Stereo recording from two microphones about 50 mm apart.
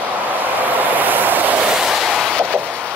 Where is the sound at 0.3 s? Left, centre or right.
Right.